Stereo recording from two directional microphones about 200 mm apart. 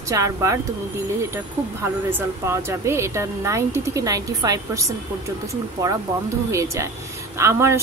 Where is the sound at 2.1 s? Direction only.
15° right (ahead or behind).